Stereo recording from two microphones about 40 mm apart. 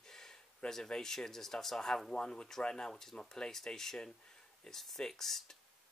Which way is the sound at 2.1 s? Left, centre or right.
Left.